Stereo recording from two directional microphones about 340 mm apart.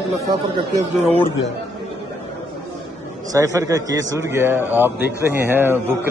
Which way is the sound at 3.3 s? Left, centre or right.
Centre.